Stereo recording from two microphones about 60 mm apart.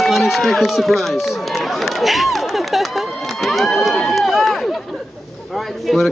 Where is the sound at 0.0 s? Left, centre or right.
Centre.